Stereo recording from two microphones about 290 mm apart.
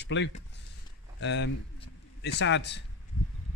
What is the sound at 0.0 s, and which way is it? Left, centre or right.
Speech, left.